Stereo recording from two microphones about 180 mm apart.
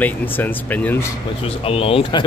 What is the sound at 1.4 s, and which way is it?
Speech, 30° left (ahead or behind).